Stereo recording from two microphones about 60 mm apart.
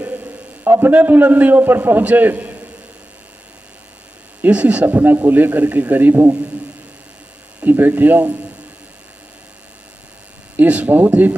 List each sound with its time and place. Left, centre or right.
0.0 s a sound: right
0.9 s a man's voice: right
4.4 s speech: right
4.8 s a man's voice: right
7.6 s a man's voice: right
10.5 s speech: right